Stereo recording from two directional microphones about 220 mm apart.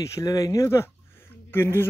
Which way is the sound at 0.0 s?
15° left (ahead or behind).